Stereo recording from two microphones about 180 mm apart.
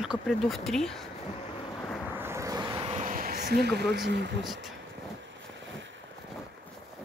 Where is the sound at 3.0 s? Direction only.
50° right (ahead or behind); by 4.3 s 70° right (ahead or behind).